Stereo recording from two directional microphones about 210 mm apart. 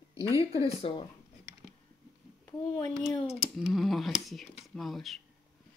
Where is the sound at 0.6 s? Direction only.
25° left (ahead or behind).